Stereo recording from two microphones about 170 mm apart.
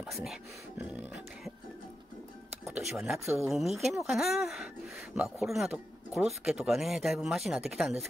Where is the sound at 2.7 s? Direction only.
5° right (ahead or behind).